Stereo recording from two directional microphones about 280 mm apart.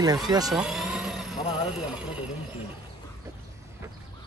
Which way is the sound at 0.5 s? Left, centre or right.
Centre.